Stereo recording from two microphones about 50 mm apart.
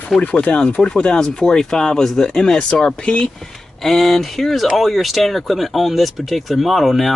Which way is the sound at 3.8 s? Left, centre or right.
Centre.